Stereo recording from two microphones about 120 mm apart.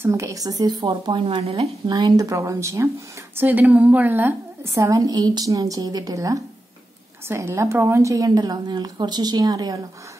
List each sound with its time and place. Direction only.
0.0 s a woman's voice: 25° right (ahead or behind)
1.2 s speech: 50° right (ahead or behind)
1.9 s a woman's voice: 35° right (ahead or behind)